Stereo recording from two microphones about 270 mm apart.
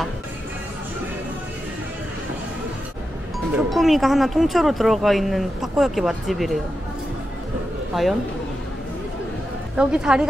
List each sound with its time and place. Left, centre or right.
3.5 s speech: centre
7.9 s speech: centre
9.8 s speech: centre